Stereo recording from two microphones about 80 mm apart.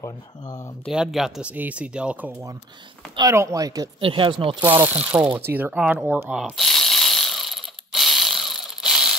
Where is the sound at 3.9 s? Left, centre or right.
Right.